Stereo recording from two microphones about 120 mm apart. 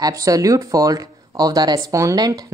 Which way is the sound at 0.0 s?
30° right (ahead or behind).